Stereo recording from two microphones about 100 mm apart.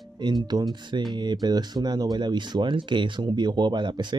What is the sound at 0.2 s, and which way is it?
Speech, 45° right (ahead or behind).